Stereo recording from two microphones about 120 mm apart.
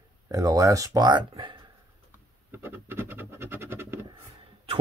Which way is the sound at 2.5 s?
20° right (ahead or behind).